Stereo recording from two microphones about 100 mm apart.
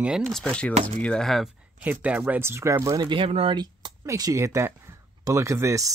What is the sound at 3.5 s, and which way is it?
Speech, 45° right (ahead or behind).